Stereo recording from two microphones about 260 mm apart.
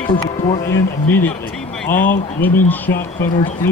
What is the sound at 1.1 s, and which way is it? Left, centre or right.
Speech, centre.